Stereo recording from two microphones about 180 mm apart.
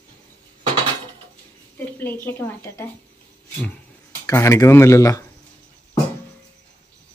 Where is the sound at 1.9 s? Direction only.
10° left (ahead or behind).